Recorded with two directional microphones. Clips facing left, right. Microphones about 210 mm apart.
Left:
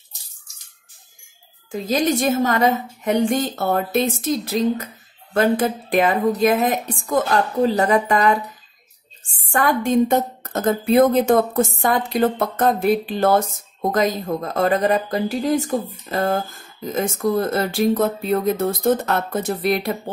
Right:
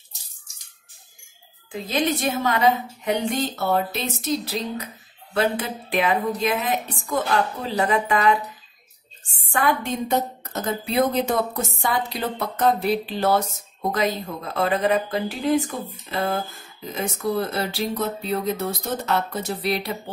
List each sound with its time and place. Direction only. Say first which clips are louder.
1.7 s a woman's voice: left 4 dB; 45° left (ahead or behind)